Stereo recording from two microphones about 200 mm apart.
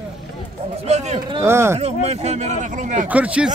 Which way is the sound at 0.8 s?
35° right (ahead or behind).